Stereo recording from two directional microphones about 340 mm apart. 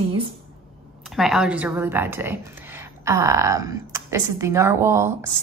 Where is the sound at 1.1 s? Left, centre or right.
Centre.